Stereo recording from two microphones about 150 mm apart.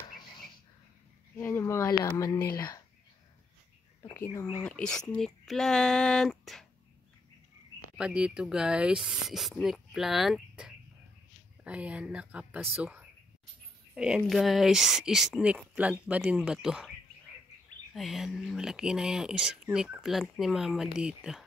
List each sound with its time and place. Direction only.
1.3 s speech: 15° left (ahead or behind)
4.1 s speech: 20° left (ahead or behind)
4.6 s speech: 5° left (ahead or behind)
8.0 s speech: 5° right (ahead or behind)
17.9 s speech: centre (ahead or behind)